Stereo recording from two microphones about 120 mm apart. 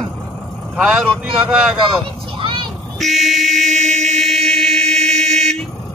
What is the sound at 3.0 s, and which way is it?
Speech, centre (ahead or behind).